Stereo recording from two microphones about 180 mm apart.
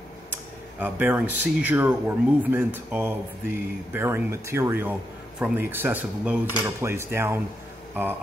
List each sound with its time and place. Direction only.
0.7 s speech: 10° right (ahead or behind)